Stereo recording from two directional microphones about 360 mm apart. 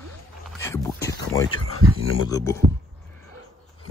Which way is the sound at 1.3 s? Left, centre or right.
Left.